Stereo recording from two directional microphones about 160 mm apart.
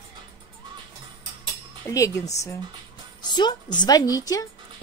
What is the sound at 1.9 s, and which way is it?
Speech, 20° left (ahead or behind).